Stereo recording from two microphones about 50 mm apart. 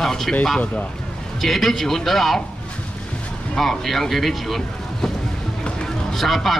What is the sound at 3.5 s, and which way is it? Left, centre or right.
Speech, centre.